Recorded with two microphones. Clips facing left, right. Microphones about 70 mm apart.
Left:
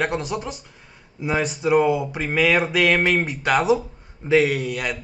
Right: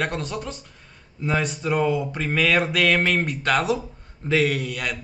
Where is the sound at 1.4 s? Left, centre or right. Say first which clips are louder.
Left 6 dB; centre.